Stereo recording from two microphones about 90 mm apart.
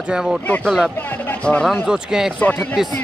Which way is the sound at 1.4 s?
10° left (ahead or behind).